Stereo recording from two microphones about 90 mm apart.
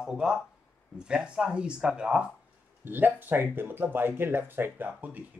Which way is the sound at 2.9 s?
20° right (ahead or behind).